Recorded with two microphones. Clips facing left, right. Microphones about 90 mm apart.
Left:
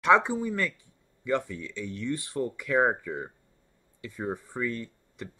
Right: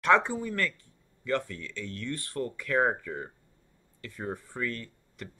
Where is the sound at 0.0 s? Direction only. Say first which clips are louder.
Left 2 dB; 10° left (ahead or behind).